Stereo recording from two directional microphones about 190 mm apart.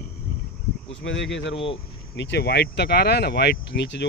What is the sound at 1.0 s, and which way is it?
Speech, 70° left (ahead or behind).